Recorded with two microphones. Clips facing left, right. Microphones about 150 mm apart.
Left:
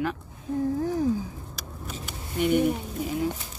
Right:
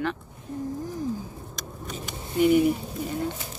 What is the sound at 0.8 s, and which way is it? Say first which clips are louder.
Speech: left 6 dB; 75° left (ahead or behind).